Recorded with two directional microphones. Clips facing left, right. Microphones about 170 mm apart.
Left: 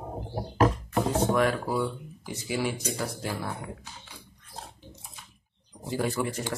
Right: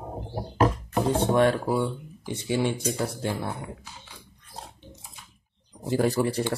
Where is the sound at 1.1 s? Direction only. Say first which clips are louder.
Right 4 dB; 30° right (ahead or behind).